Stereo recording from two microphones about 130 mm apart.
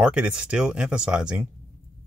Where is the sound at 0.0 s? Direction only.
5° right (ahead or behind).